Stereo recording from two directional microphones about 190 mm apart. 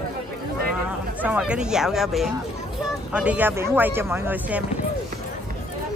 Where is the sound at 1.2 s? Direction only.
5° right (ahead or behind).